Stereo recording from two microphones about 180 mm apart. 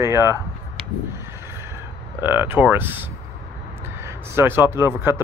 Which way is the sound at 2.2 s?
10° right (ahead or behind).